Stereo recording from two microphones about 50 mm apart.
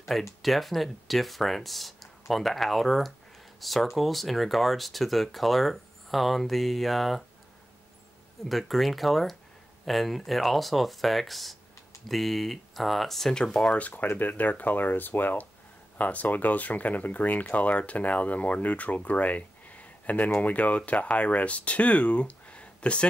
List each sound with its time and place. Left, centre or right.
0.1 s speech: centre
8.5 s speech: centre
13.3 s speech: centre
13.7 s speech: left